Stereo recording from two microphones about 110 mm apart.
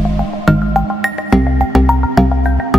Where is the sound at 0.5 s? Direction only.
Centre (ahead or behind).